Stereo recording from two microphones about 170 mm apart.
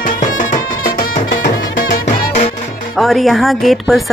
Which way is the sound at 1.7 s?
65° left (ahead or behind).